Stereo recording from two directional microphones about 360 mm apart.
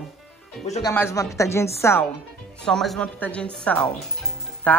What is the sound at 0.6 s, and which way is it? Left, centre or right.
Speech, centre.